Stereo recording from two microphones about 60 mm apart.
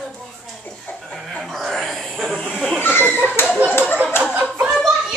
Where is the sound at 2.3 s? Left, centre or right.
Centre.